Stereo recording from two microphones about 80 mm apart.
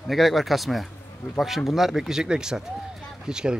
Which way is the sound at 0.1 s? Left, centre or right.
Centre.